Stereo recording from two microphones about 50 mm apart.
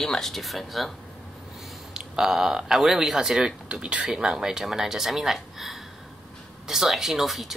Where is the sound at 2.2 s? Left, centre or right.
Centre.